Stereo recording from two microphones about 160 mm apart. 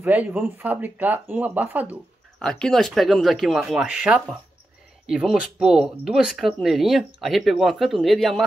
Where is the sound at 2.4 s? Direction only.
5° left (ahead or behind).